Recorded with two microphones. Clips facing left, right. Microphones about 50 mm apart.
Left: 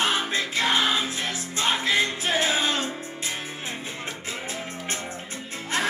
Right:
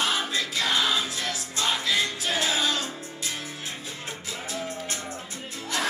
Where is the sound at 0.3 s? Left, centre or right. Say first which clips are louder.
Left 3 dB; left.